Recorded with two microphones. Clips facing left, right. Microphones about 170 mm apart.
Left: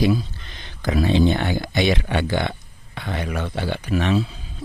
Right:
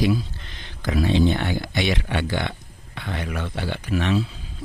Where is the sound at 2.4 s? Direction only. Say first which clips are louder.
Left 3 dB; 40° left (ahead or behind).